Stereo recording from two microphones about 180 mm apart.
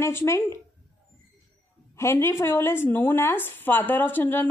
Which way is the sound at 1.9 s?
15° left (ahead or behind).